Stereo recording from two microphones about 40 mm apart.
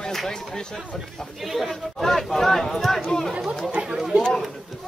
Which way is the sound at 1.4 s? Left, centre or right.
Centre.